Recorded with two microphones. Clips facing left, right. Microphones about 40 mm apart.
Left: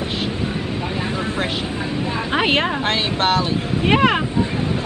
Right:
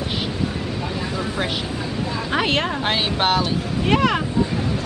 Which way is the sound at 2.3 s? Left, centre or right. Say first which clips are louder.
Left 3 dB; left.